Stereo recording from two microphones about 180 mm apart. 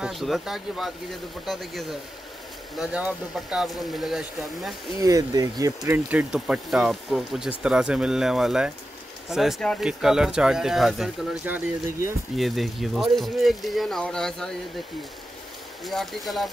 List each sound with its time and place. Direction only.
0.0 s speech: centre (ahead or behind)
5.0 s speech: 20° right (ahead or behind)
6.0 s speech: 5° right (ahead or behind)
15.8 s speech: centre (ahead or behind)